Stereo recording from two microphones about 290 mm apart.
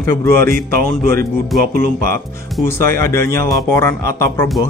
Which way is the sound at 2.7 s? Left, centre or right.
Centre.